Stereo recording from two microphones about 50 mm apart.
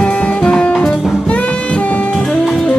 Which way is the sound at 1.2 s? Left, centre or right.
Left.